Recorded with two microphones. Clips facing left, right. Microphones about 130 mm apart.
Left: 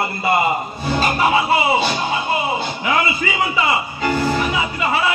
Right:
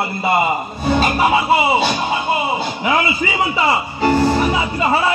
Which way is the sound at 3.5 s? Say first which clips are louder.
Right 2 dB; 35° right (ahead or behind).